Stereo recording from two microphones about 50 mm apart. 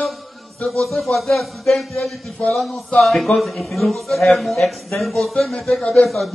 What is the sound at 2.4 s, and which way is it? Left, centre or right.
Speech, left.